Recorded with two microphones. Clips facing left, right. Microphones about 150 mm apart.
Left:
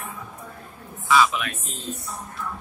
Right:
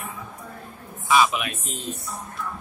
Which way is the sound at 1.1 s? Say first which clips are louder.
Even; 20° right (ahead or behind).